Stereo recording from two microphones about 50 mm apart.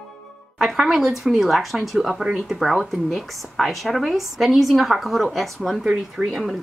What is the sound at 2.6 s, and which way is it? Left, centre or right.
A woman's voice, centre.